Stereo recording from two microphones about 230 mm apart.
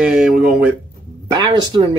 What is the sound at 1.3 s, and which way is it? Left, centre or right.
Speech, centre.